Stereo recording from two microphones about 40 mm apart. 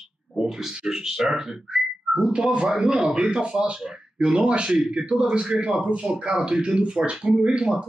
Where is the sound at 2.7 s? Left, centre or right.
Centre.